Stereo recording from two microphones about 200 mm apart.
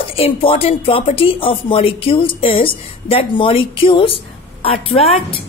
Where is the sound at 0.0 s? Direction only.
30° left (ahead or behind).